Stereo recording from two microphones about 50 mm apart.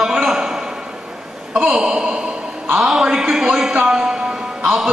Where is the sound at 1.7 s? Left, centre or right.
Centre.